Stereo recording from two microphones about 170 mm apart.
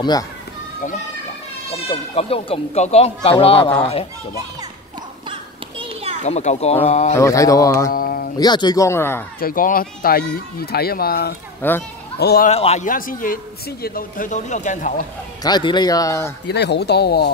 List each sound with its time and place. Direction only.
1.9 s speech: 35° left (ahead or behind)
5.3 s children playing: 30° right (ahead or behind)
6.2 s speech: 40° left (ahead or behind)
7.2 s speech: 20° left (ahead or behind)
7.9 s a sound: 60° left (ahead or behind)
8.4 s speech: 25° left (ahead or behind)
9.4 s speech: 55° left (ahead or behind)
11.6 s a child's voice: 10° left (ahead or behind)
12.2 s speech: 70° left (ahead or behind)
12.4 s speech: 40° left (ahead or behind)
12.8 s a man's voice: 50° left (ahead or behind)
15.4 s speech: 25° left (ahead or behind)
16.4 s speech: 80° left